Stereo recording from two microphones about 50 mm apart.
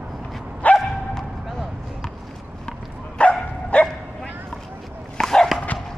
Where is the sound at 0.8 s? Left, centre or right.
Centre.